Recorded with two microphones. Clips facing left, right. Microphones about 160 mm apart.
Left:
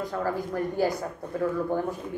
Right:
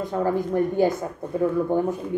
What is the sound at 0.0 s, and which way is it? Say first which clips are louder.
A woman's voice: right 5 dB; 20° right (ahead or behind).